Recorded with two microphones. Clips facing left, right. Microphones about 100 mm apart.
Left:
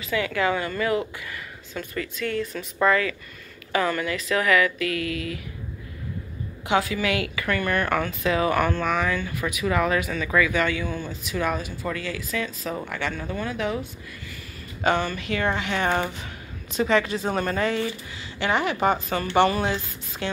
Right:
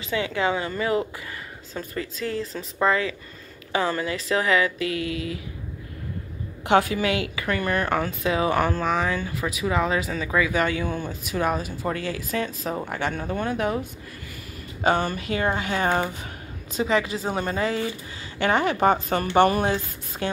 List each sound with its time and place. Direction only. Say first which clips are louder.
0.0 s speech: even; 25° right (ahead or behind)
1.7 s speech: even; 35° right (ahead or behind)
6.6 s speech: right 4 dB; 50° right (ahead or behind)
7.0 s speech: right 1 dB; 30° right (ahead or behind)
10.5 s speech: right 1 dB; 40° right (ahead or behind)
14.8 s speech: right 1 dB; 40° right (ahead or behind)
16.7 s speech: left 1 dB; 20° right (ahead or behind)
18.4 s speech: right 2 dB; 45° right (ahead or behind)